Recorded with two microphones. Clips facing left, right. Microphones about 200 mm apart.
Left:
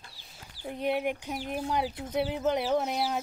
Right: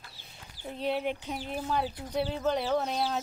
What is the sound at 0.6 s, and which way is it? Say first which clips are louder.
Speech: left 2 dB; 15° left (ahead or behind).